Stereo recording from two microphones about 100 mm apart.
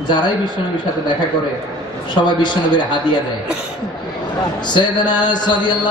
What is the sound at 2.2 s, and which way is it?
Speech, 50° left (ahead or behind).